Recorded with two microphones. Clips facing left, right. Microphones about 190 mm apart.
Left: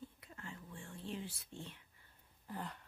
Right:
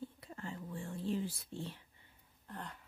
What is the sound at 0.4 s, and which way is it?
Whispering, 35° right (ahead or behind).